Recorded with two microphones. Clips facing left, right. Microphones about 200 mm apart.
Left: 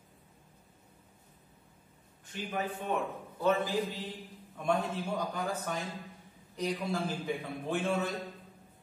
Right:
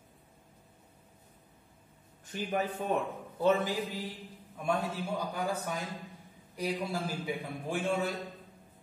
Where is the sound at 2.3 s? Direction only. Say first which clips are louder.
Right 3 dB; 45° right (ahead or behind).